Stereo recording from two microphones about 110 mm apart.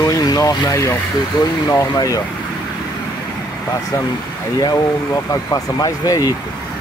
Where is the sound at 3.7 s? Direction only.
35° left (ahead or behind).